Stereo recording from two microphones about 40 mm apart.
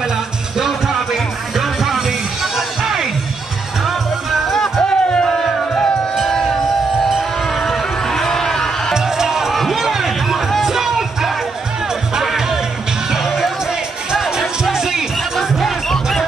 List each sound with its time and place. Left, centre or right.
0.6 s music: centre
4.5 s music: centre
6.3 s a sound: centre
7.1 s music: centre
7.6 s music: centre
8.9 s music: centre
9.5 s a sound: centre
10.7 s music: centre